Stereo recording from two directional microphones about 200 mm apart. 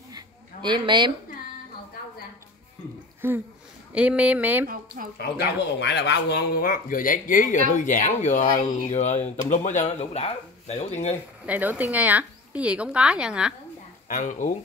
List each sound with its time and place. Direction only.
0.1 s a sound: 20° right (ahead or behind)
3.2 s speech: 10° right (ahead or behind)
5.2 s speech: 55° left (ahead or behind); by 11.1 s 35° left (ahead or behind)
11.4 s a woman's voice: 10° right (ahead or behind)
14.0 s speech: 40° left (ahead or behind)